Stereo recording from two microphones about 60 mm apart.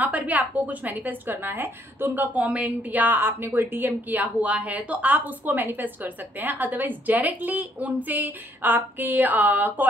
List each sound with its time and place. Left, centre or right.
0.0 s a woman's voice: right